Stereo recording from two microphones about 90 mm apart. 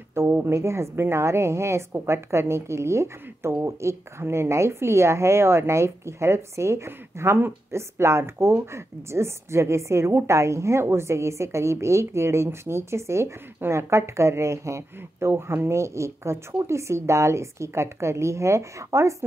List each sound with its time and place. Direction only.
0.1 s a woman's voice: 25° right (ahead or behind)